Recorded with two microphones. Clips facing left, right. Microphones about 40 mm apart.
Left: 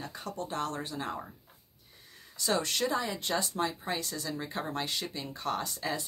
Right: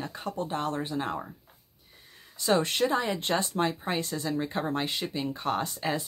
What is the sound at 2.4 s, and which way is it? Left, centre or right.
Speech, right.